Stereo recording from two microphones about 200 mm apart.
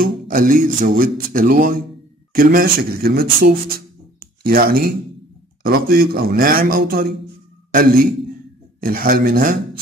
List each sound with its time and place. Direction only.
0.0 s speech: 45° right (ahead or behind)